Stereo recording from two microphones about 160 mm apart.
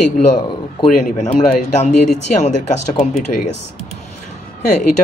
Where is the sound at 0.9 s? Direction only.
50° left (ahead or behind).